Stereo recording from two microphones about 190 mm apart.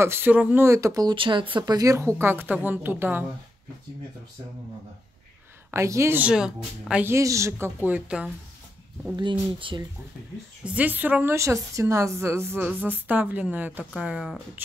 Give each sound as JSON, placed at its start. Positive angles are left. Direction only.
{"t": 0.0, "sound": "speech", "side_deg": -10}
{"t": 5.7, "sound": "speech", "side_deg": -15}
{"t": 9.1, "sound": "speech", "side_deg": -25}
{"t": 10.6, "sound": "speech", "side_deg": -5}